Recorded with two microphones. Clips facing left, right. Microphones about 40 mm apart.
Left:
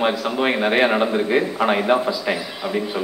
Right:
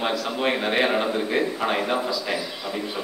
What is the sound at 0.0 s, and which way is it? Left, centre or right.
Speech, left.